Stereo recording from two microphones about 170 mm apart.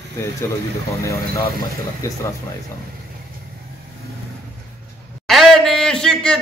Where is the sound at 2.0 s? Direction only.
20° left (ahead or behind).